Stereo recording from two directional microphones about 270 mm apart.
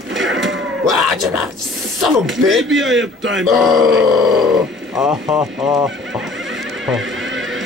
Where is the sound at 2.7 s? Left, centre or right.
Right.